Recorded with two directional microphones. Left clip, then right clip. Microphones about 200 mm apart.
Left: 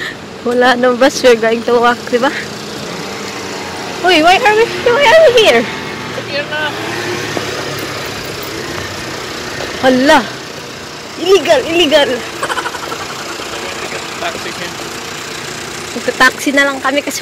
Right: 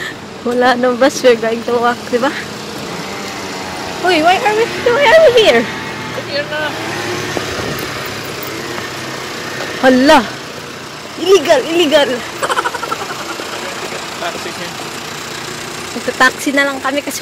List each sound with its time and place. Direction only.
0.6 s speech: centre (ahead or behind)
4.1 s speech: 10° left (ahead or behind)
4.9 s speech: 15° right (ahead or behind)
9.8 s speech: 25° right (ahead or behind)
11.2 s speech: 20° right (ahead or behind)
16.2 s speech: centre (ahead or behind)